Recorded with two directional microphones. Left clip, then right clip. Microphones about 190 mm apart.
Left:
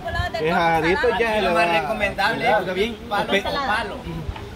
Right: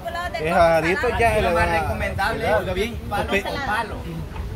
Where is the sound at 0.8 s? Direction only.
Centre (ahead or behind).